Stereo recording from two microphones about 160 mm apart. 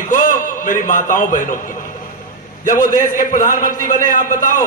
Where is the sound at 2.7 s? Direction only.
55° left (ahead or behind).